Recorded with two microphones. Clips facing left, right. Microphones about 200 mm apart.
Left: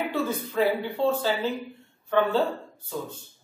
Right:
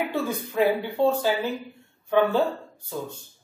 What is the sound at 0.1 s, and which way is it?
Speech, 15° right (ahead or behind).